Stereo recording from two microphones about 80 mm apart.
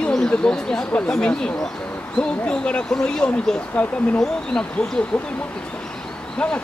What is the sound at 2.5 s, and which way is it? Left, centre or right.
Speech, centre.